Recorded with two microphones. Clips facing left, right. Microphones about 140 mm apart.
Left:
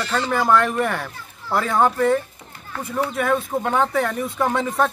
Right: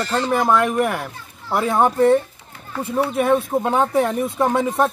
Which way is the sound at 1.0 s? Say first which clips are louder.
Right 1 dB; 20° right (ahead or behind).